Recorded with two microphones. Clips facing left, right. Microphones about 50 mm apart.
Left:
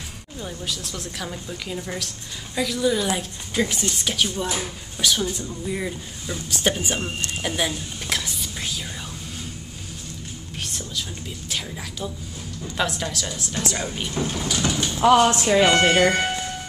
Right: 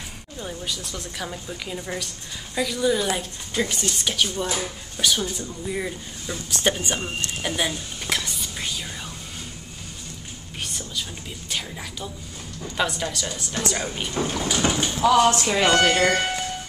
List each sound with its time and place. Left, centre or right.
0.4 s speech: centre
10.6 s whispering: centre
12.6 s speech: centre
14.5 s speech: right
15.0 s speech: left
15.4 s speech: centre